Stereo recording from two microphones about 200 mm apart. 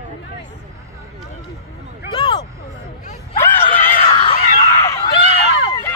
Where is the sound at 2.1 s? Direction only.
20° left (ahead or behind).